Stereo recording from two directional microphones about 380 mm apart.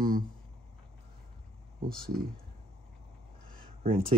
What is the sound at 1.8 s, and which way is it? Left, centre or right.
Speech, right.